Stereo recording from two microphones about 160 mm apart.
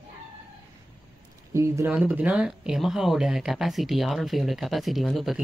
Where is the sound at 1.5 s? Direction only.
20° right (ahead or behind).